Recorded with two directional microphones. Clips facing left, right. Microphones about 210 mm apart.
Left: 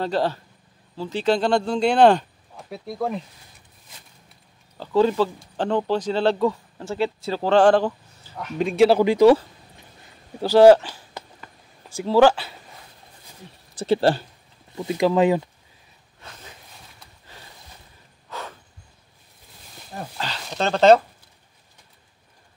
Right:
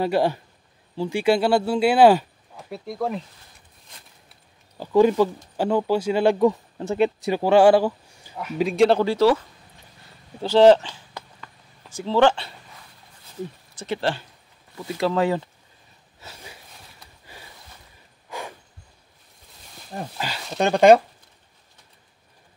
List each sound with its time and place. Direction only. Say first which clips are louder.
0.0 s speech: right 2 dB; 10° right (ahead or behind)
4.7 s speech: right 2 dB; 15° right (ahead or behind); by 9.0 s 5° left (ahead or behind)
9.0 s speech: left 4 dB; 15° left (ahead or behind)
10.4 s a sound: left 2 dB; 10° left (ahead or behind)
13.7 s speech: left 7 dB; 35° left (ahead or behind)
14.8 s speech: left 4 dB; 20° left (ahead or behind)
16.2 s a sound: right 1 dB; 5° right (ahead or behind)
20.2 s speech: right 2 dB; 10° right (ahead or behind)